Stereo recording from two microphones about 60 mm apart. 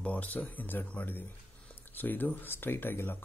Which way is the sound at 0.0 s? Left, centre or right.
Left.